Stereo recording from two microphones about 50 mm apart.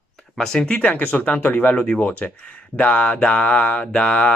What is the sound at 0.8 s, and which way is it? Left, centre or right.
Speech, left.